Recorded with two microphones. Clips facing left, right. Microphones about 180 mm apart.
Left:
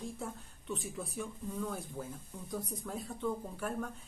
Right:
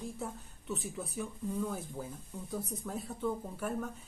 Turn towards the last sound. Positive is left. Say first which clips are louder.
# right 1 dB
turn(degrees=-5)  # may be behind; listen again after turning